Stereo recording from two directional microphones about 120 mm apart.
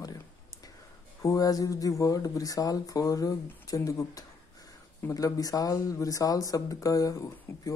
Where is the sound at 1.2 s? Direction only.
30° left (ahead or behind).